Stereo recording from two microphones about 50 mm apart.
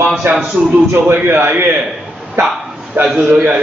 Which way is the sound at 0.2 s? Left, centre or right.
Right.